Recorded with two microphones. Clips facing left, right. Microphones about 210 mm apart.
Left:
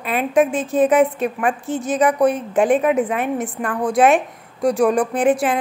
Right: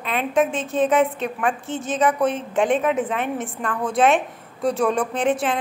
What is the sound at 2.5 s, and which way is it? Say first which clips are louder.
A woman's voice: left 4 dB; centre (ahead or behind).